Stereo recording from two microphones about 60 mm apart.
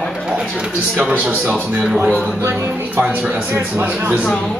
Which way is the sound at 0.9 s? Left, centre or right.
Right.